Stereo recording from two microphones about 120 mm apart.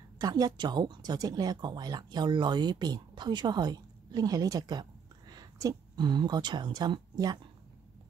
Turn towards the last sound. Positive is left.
turn(degrees=-35)  # may be behind; listen again after turning